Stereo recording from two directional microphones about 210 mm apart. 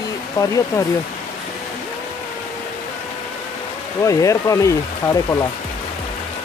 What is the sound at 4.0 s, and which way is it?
Speech, 15° left (ahead or behind).